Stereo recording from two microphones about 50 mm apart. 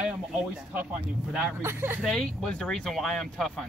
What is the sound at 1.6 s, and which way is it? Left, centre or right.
Speech, right.